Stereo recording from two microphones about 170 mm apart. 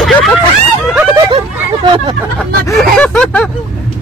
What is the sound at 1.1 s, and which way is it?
Hubbub, 20° right (ahead or behind).